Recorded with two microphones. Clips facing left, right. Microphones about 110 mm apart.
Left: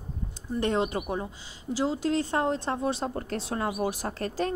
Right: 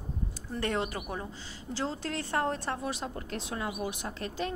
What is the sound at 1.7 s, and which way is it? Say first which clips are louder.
Speech: left 7 dB; 15° left (ahead or behind).